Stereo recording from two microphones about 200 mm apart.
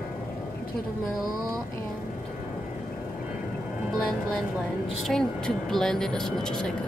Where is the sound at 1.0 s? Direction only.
Centre (ahead or behind).